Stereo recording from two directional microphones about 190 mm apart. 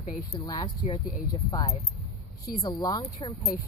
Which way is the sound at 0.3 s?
25° left (ahead or behind).